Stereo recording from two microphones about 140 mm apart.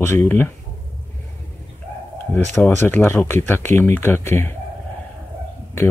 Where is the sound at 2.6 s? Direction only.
15° left (ahead or behind).